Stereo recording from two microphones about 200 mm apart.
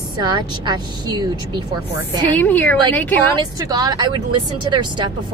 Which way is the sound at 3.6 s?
15° right (ahead or behind).